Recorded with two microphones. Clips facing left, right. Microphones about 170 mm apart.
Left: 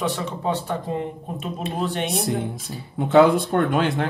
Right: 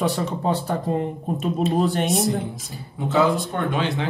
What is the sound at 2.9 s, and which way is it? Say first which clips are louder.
Speech: left 5 dB; 60° left (ahead or behind).